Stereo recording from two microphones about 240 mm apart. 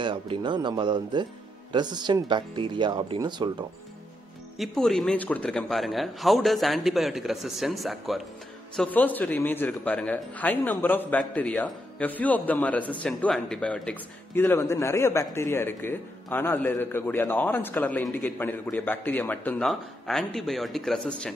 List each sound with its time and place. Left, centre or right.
0.0 s speech: centre
4.6 s speech: centre